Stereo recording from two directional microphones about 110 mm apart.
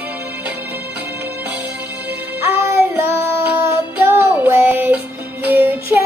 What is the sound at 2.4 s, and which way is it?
Child singing, 20° right (ahead or behind).